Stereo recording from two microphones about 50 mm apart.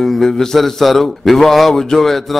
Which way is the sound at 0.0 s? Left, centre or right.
Centre.